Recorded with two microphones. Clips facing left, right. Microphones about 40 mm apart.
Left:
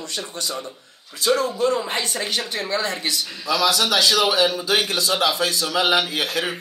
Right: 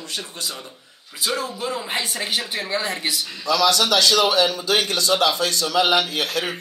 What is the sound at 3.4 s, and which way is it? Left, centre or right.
A man's voice, centre.